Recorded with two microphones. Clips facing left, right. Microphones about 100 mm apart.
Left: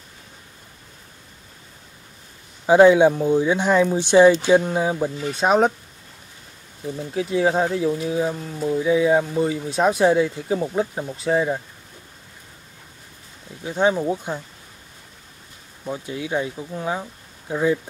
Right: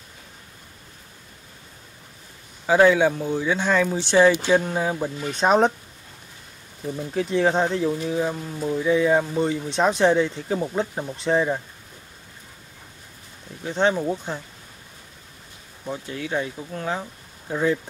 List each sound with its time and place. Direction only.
2.6 s speech: 20° left (ahead or behind)
6.9 s speech: 5° left (ahead or behind)
8.3 s speech: centre (ahead or behind)
8.7 s speech: 10° left (ahead or behind)
13.7 s speech: 10° left (ahead or behind)
15.8 s speech: 15° left (ahead or behind)